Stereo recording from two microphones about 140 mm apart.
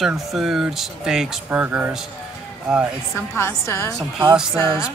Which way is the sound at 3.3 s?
20° left (ahead or behind).